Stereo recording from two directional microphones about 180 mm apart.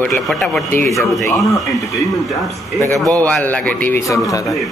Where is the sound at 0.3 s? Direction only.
Centre (ahead or behind).